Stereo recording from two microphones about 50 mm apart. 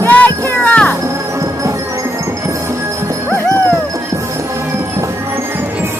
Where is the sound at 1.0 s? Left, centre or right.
Right.